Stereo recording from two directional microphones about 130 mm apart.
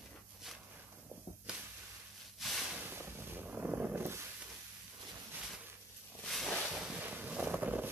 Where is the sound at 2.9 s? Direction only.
20° right (ahead or behind).